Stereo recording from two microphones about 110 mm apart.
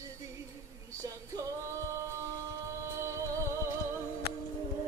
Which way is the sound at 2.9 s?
25° right (ahead or behind).